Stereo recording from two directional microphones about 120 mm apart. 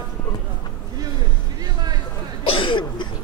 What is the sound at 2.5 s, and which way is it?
Cough, 45° left (ahead or behind).